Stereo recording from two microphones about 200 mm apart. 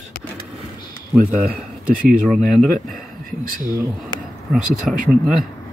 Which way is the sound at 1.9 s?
40° right (ahead or behind).